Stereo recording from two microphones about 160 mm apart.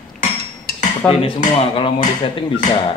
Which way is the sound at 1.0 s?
5° left (ahead or behind).